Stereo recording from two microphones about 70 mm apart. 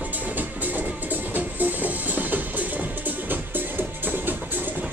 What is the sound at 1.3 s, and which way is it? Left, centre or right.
Music, right.